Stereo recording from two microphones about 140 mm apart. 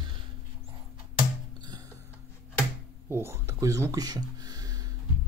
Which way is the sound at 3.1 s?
20° right (ahead or behind).